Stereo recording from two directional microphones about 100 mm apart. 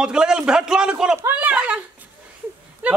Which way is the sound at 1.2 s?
20° right (ahead or behind).